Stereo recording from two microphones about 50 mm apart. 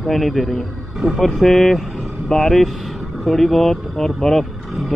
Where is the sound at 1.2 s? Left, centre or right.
Centre.